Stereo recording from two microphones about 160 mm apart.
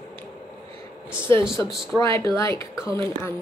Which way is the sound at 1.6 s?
15° left (ahead or behind).